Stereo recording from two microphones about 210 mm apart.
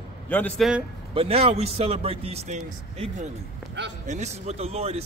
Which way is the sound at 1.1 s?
25° right (ahead or behind).